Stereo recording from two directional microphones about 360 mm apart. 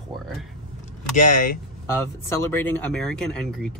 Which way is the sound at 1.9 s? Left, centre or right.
Centre.